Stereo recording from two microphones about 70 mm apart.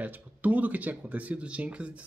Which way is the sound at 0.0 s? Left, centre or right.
Right.